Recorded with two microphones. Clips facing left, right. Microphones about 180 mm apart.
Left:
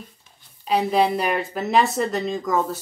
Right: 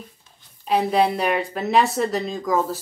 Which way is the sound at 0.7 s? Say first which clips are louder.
Even; centre (ahead or behind).